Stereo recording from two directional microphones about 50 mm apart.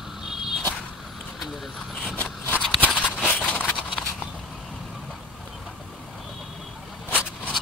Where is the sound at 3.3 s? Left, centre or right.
Left.